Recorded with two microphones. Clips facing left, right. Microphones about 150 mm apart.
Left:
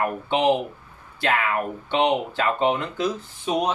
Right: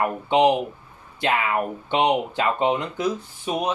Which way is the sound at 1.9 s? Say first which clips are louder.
Right 1 dB; 15° right (ahead or behind).